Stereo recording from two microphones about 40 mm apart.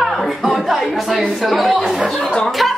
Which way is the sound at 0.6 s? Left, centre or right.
Centre.